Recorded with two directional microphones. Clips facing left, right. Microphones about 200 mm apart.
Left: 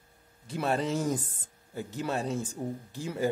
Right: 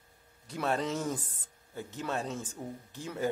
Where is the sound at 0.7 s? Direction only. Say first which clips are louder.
Left 3 dB; 5° left (ahead or behind).